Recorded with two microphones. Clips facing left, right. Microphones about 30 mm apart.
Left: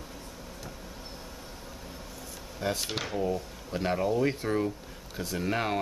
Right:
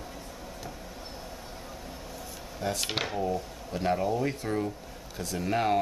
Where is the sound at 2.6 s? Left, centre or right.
Centre.